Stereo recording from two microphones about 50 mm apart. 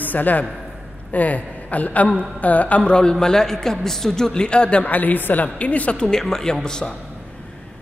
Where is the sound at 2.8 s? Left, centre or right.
Centre.